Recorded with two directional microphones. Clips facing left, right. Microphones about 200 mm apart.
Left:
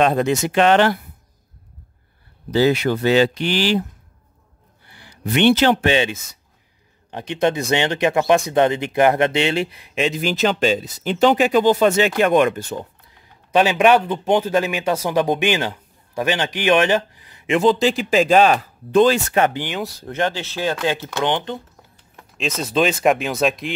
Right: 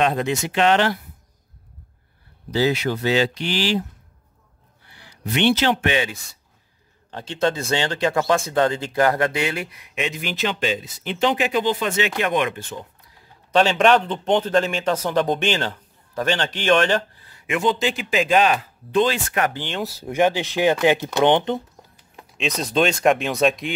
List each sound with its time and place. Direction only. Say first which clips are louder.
0.0 s speech: left 4 dB; 45° left (ahead or behind)
2.5 s speech: left 4 dB; 55° left (ahead or behind)
5.0 s speech: left 4 dB; 55° left (ahead or behind)
5.8 s speech: left 4 dB; 25° left (ahead or behind)
13.5 s speech: left 2 dB; 10° left (ahead or behind)
17.6 s speech: left 5 dB; 35° left (ahead or behind)
19.5 s speech: left 3 dB; 10° left (ahead or behind)
19.8 s speech: right 5 dB; 5° right (ahead or behind)
22.4 s speech: left 1 dB; centre (ahead or behind)